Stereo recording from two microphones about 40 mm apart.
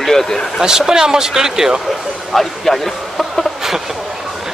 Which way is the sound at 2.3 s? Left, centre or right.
Centre.